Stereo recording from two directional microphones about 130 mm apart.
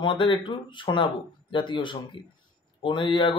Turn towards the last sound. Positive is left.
turn(degrees=40)  # may be behind; listen again after turning